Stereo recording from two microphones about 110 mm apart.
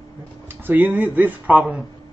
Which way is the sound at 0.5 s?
15° right (ahead or behind).